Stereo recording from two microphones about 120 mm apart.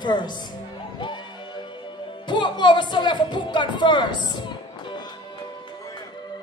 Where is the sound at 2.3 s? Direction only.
40° left (ahead or behind).